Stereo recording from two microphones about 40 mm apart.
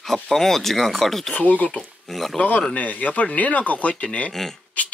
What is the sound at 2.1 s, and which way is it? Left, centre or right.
Speech, centre.